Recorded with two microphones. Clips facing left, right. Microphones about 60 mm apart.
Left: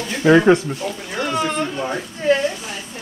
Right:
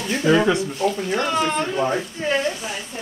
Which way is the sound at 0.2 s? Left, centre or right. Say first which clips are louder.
Left 6 dB; left.